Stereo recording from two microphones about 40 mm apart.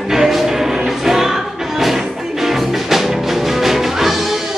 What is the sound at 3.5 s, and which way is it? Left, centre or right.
Music, centre.